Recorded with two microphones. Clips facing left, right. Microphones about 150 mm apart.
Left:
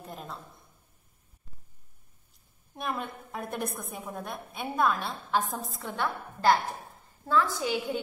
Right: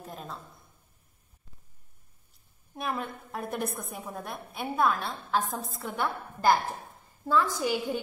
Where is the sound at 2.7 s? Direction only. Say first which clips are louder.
Right 1 dB; centre (ahead or behind).